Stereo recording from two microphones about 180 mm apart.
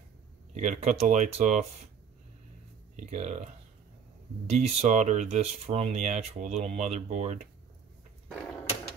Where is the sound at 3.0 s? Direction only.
40° right (ahead or behind).